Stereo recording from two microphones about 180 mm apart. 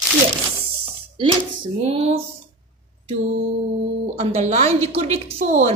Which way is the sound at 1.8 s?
35° right (ahead or behind).